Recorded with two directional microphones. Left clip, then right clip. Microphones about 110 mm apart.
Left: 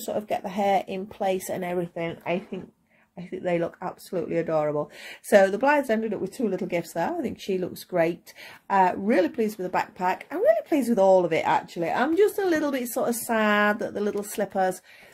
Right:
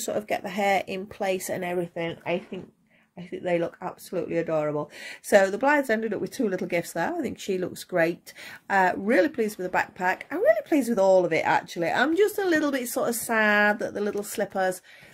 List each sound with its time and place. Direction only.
0.0 s speech: 40° right (ahead or behind); by 5.9 s 15° right (ahead or behind)
5.9 s speech: 35° right (ahead or behind)
13.4 s speech: 15° right (ahead or behind)